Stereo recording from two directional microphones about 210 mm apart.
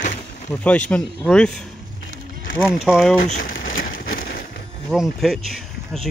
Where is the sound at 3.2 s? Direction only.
40° left (ahead or behind).